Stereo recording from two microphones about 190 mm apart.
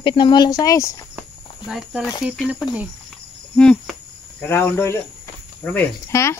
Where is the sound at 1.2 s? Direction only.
5° right (ahead or behind).